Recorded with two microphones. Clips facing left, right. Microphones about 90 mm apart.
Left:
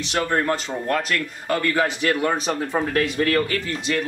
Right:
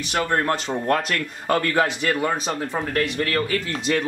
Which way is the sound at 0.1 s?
5° right (ahead or behind).